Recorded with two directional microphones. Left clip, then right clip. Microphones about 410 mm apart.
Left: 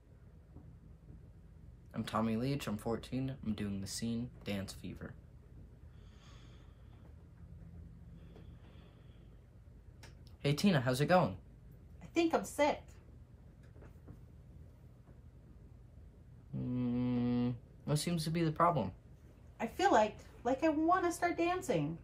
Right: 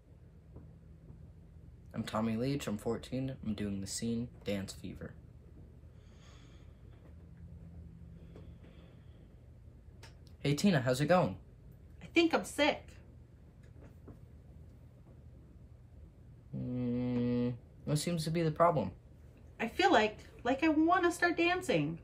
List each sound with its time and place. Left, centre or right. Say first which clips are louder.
1.9 s speech: even; centre
10.4 s a woman's voice: right 1 dB; centre
16.5 s music: right 1 dB; centre
19.5 s a woman's voice: right 2 dB; centre